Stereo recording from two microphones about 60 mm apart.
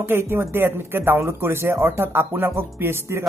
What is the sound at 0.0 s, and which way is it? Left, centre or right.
Speech, right.